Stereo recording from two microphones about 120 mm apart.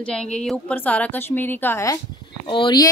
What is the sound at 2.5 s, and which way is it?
Speech, 45° left (ahead or behind).